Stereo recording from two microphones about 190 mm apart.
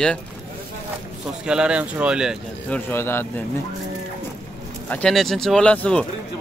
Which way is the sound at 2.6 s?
10° left (ahead or behind).